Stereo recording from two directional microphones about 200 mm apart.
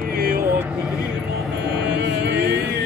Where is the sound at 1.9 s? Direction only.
60° right (ahead or behind).